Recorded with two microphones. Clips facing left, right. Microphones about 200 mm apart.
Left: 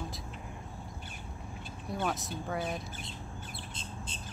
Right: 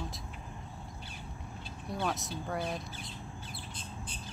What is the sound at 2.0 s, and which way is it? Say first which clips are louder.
Speech: left 1 dB; centre (ahead or behind).